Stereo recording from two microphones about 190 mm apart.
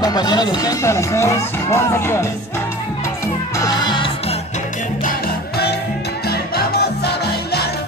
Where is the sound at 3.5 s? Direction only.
20° left (ahead or behind).